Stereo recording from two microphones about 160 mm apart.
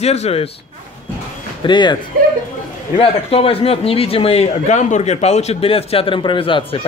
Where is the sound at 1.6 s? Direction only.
30° left (ahead or behind).